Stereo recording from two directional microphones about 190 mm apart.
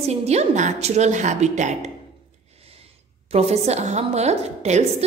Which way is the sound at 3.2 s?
35° right (ahead or behind).